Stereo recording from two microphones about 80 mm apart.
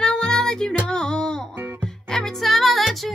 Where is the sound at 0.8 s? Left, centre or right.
Centre.